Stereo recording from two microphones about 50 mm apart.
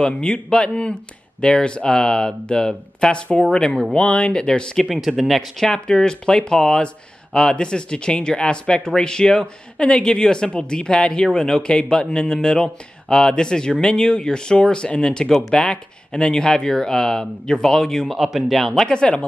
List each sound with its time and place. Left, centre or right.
0.0 s speech: left
4.8 s speech: centre
5.7 s speech: centre
18.0 s speech: centre
18.9 s speech: centre